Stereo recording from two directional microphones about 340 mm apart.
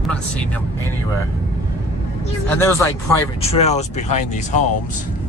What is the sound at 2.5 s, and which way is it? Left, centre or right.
Speech, centre.